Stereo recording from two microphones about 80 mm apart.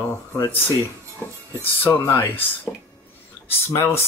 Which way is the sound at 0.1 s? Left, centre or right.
Left.